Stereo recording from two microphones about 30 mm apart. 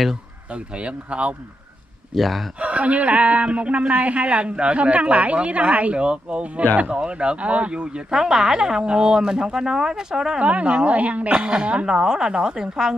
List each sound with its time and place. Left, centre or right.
0.7 s speech: right
2.1 s speech: centre
2.6 s a woman's voice: right
8.1 s speech: centre
10.4 s speech: right
10.9 s a woman's voice: right
11.4 s speech: right
11.9 s speech: right